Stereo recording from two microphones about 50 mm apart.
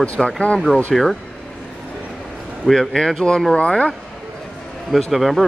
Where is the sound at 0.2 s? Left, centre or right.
Centre.